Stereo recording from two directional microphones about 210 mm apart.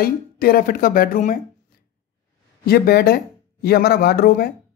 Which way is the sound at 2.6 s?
45° left (ahead or behind).